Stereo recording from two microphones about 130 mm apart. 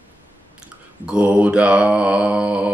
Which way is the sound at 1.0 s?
10° right (ahead or behind).